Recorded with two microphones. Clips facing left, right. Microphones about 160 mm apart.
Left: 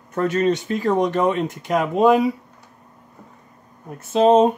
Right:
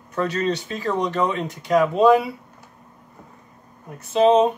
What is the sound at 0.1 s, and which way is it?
Speech, 45° left (ahead or behind).